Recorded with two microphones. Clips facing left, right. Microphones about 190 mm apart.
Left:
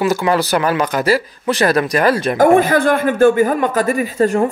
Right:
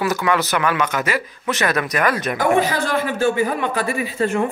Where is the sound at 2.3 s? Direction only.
50° left (ahead or behind).